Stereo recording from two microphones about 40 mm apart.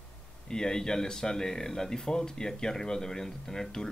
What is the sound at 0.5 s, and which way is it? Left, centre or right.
Speech, centre.